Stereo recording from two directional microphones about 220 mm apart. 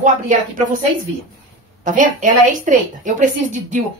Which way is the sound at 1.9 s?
35° right (ahead or behind).